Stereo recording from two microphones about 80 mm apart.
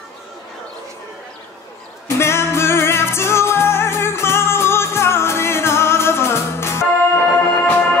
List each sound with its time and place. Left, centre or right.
2.0 s music: left